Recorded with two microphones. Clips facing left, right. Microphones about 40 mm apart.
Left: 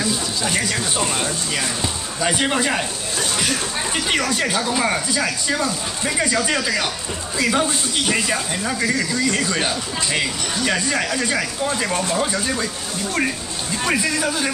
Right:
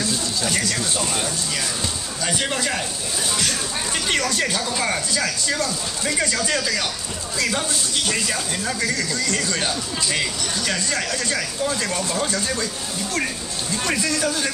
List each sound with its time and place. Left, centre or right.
0.0 s speech: centre
4.1 s speech: centre
13.8 s speech: centre